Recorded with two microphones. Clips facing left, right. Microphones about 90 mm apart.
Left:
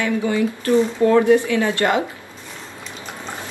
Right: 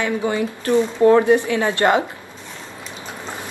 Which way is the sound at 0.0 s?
30° right (ahead or behind).